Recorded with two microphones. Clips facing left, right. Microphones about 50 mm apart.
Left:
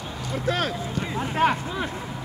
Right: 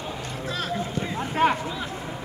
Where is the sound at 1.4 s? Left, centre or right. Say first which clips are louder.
Even; centre.